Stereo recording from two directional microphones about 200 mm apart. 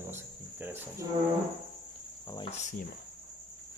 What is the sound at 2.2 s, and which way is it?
Cricket, 15° left (ahead or behind).